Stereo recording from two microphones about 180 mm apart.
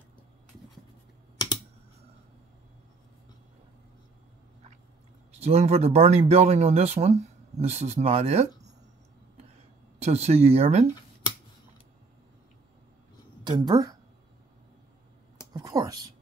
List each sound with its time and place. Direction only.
5.3 s speech: 35° right (ahead or behind)
9.9 s speech: 35° right (ahead or behind)
13.4 s a woman's voice: 25° right (ahead or behind)
15.5 s a woman's voice: 20° right (ahead or behind)